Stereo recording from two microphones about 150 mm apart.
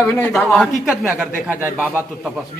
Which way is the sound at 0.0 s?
10° left (ahead or behind).